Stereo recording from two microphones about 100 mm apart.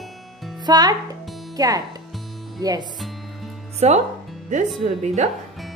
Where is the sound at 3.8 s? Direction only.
90° right.